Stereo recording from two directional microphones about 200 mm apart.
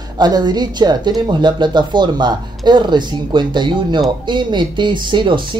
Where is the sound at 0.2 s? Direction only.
20° right (ahead or behind).